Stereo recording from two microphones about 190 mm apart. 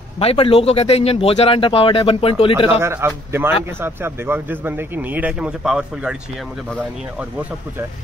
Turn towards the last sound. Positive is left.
turn(degrees=-5)  # may be behind; listen again after turning